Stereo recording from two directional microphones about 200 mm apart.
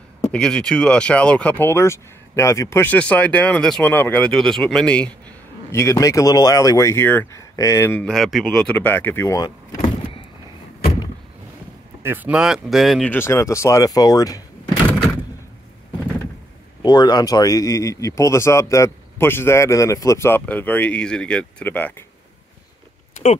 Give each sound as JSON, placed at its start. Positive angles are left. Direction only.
{"t": 0.2, "sound": "speech", "side_deg": 5}
{"t": 12.0, "sound": "speech", "side_deg": -10}
{"t": 16.8, "sound": "speech", "side_deg": 20}
{"t": 23.2, "sound": "speech", "side_deg": 35}